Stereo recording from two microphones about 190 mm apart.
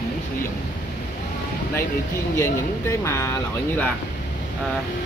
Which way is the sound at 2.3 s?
15° left (ahead or behind).